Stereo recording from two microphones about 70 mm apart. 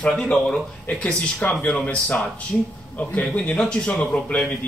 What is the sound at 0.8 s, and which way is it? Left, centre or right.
Speech, left.